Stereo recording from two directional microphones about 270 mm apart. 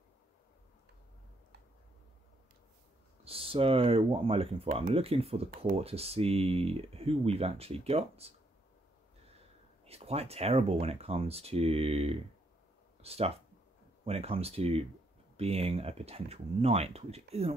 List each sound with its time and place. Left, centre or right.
3.3 s speech: right
9.8 s speech: right